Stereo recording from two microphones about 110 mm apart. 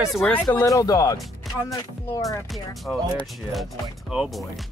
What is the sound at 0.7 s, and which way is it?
Music, 30° left (ahead or behind).